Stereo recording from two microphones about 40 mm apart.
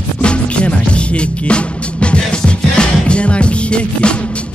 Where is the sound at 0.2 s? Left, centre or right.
Left.